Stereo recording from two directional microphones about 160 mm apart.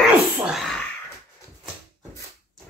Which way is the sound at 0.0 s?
5° right (ahead or behind).